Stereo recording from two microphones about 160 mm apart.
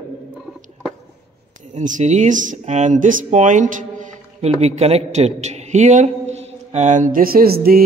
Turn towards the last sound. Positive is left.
turn(degrees=-70)  # may be behind; listen again after turning